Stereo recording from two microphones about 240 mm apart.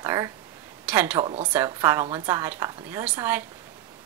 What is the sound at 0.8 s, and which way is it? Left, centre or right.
Speech, centre.